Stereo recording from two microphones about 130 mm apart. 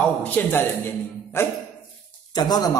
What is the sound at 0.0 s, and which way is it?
A man's voice, 15° left (ahead or behind).